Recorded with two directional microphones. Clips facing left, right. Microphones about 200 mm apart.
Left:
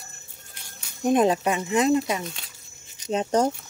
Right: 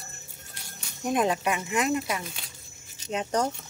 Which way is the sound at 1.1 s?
25° left (ahead or behind).